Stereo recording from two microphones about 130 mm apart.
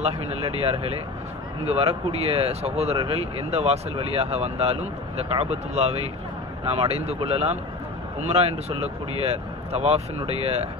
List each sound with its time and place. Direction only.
0.0 s speech: 50° right (ahead or behind)